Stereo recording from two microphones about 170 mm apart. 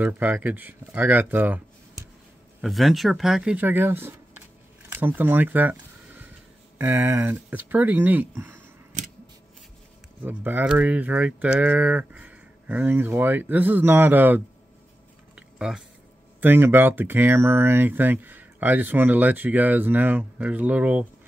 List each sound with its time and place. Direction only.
0.0 s speech: 10° right (ahead or behind)
2.6 s speech: centre (ahead or behind)
4.8 s camera: 10° right (ahead or behind)
6.8 s speech: 15° right (ahead or behind)
10.2 s speech: 10° right (ahead or behind)
15.3 s a sound: 5° right (ahead or behind)
16.3 s speech: 10° right (ahead or behind)